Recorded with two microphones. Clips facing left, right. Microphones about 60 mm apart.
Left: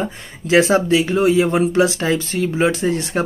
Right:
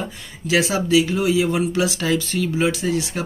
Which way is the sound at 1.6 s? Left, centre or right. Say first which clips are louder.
Left 5 dB; left.